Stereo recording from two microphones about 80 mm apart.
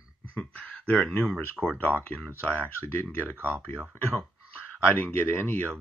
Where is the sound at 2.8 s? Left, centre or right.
Left.